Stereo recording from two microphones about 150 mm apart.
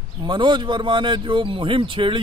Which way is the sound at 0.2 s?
30° right (ahead or behind).